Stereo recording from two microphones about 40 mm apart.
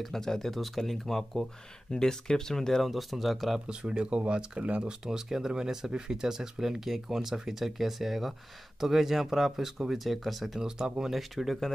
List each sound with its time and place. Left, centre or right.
0.0 s speech: centre
1.9 s speech: centre
2.8 s speech: centre
3.6 s speech: right
5.0 s speech: centre
10.6 s speech: centre
11.1 s speech: centre